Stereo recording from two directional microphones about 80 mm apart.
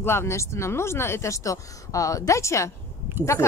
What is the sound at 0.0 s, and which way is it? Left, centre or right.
Speech, left.